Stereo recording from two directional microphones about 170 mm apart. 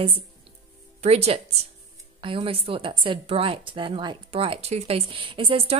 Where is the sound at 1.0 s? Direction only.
40° right (ahead or behind).